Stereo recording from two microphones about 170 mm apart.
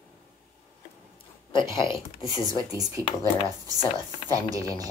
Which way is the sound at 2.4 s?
20° right (ahead or behind).